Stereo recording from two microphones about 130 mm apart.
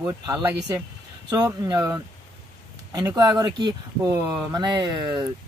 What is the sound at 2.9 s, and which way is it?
A man's voice, 30° right (ahead or behind).